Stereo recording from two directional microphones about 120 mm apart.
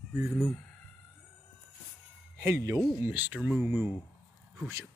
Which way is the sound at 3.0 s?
15° right (ahead or behind).